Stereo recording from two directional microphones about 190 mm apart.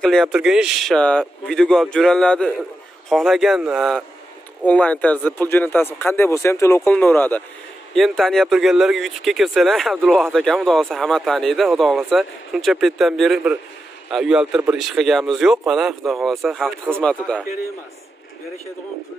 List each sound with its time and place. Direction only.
0.0 s speech: centre (ahead or behind)